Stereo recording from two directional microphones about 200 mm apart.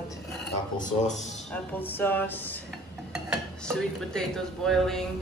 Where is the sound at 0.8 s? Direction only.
40° left (ahead or behind).